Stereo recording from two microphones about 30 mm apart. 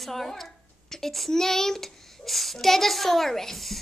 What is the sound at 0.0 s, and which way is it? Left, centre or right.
A child's voice, centre.